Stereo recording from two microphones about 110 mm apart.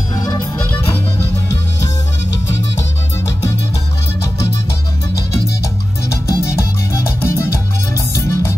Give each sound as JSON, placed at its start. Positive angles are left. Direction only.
{"t": 0.1, "sound": "music", "side_deg": 35}
{"t": 6.2, "sound": "music", "side_deg": 25}